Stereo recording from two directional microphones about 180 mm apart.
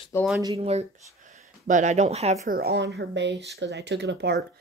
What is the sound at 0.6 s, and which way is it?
Speech, 35° right (ahead or behind).